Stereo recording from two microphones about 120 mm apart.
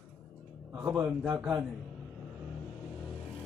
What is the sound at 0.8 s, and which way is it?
Speech, 15° right (ahead or behind).